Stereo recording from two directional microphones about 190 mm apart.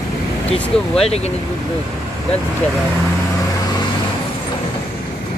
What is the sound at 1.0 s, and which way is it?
Speech, 30° left (ahead or behind).